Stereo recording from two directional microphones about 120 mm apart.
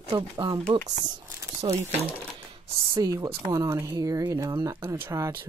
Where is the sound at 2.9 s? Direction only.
30° right (ahead or behind).